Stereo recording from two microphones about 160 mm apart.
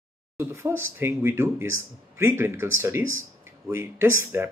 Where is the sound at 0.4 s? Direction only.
15° right (ahead or behind).